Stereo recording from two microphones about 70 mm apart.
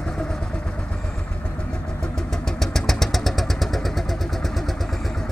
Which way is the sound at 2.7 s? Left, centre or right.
Centre.